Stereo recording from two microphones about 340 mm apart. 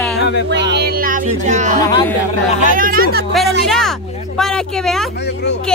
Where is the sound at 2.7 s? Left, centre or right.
Right.